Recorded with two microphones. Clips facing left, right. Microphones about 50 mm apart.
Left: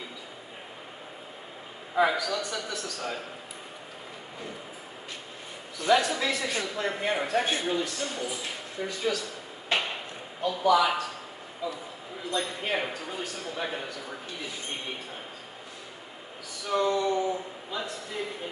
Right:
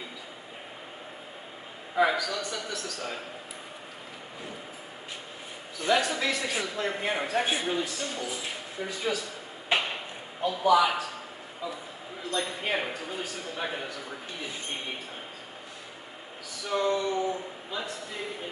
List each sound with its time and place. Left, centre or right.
2.0 s a man's voice: centre
5.9 s a man's voice: centre
9.7 s a sound: centre
10.4 s a man's voice: centre
16.6 s a man's voice: centre